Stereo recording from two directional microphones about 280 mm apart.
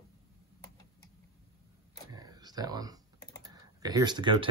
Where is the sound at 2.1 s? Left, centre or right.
Centre.